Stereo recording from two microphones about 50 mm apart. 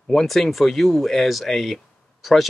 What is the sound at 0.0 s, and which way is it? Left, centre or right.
Speech, centre.